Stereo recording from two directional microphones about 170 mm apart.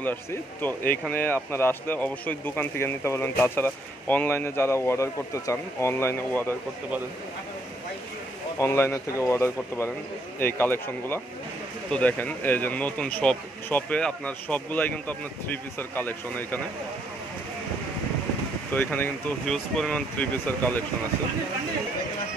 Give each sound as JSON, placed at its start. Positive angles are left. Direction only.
{"t": 0.0, "sound": "speech", "side_deg": 10}
{"t": 8.5, "sound": "speech", "side_deg": 15}
{"t": 18.7, "sound": "speech", "side_deg": 10}